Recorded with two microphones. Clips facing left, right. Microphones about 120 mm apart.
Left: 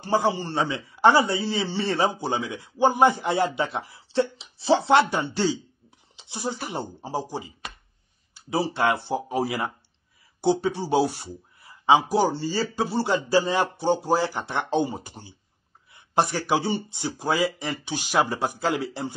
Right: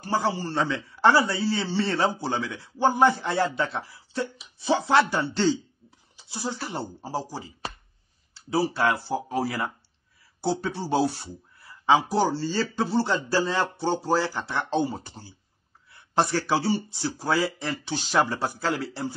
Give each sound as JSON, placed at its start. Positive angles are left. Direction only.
{"t": 0.0, "sound": "a man's voice", "side_deg": 20}